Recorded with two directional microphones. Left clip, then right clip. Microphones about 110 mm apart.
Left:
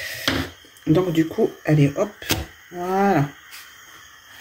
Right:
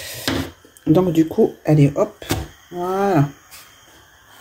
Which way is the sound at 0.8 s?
20° right (ahead or behind).